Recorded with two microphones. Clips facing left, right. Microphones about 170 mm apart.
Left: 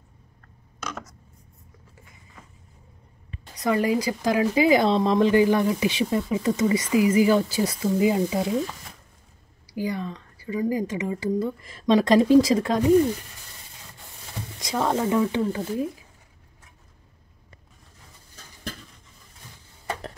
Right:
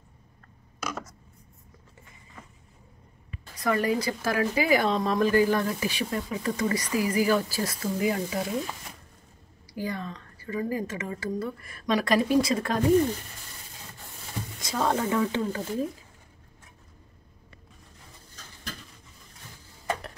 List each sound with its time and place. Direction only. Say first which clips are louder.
0.7 s a sound: right 1 dB; 10° right (ahead or behind)
3.5 s a woman's voice: left 3 dB; 20° left (ahead or behind)
9.7 s a woman's voice: left 4 dB; 15° left (ahead or behind)
14.7 s a woman's voice: left 3 dB; 15° left (ahead or behind)